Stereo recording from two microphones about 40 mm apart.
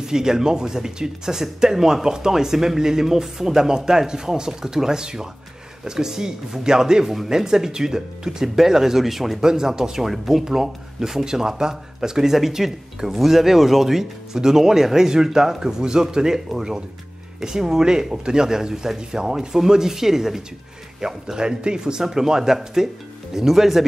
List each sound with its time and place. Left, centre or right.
0.0 s speech: centre
9.4 s speech: centre